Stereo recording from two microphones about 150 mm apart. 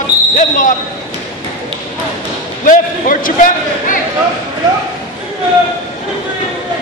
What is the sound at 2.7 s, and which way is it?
A man's voice, 65° left (ahead or behind).